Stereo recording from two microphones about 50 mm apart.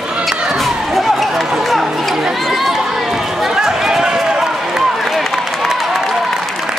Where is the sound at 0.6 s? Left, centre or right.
Centre.